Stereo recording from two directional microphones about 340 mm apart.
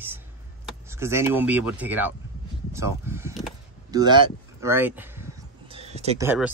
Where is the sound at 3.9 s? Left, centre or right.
Centre.